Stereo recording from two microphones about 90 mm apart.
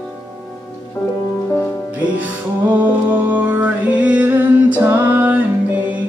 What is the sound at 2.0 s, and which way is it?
Music, 15° right (ahead or behind).